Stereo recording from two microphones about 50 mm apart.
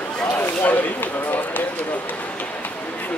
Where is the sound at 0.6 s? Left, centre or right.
Left.